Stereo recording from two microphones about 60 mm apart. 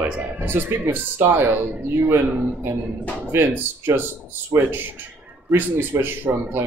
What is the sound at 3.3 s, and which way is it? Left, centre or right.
Speech, right.